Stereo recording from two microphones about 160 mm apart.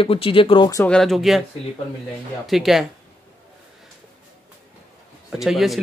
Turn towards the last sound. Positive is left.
turn(degrees=0)  # may be behind; listen again after turning